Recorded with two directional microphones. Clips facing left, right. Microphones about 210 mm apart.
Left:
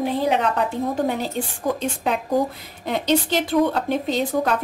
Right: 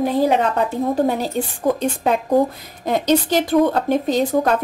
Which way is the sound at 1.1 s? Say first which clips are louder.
Right 4 dB; 40° right (ahead or behind).